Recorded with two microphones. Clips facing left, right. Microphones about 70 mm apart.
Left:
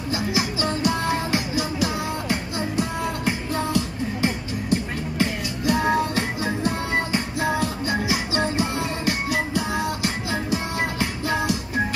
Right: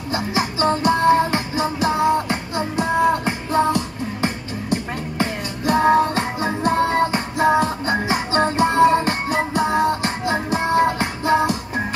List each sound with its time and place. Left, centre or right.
0.1 s music: right